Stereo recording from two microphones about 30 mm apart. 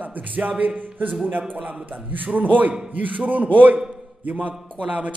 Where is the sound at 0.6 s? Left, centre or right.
Right.